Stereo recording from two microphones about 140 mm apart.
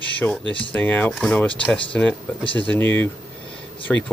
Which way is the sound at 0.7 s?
10° left (ahead or behind).